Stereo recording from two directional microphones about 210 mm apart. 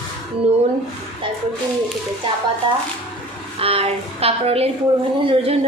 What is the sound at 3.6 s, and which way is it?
Speech, 30° right (ahead or behind).